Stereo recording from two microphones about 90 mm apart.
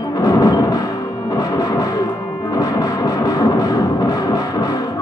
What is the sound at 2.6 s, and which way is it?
Music, 45° left (ahead or behind).